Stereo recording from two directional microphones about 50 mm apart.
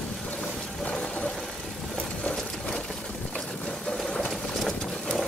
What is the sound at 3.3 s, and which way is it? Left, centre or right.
Boat, centre.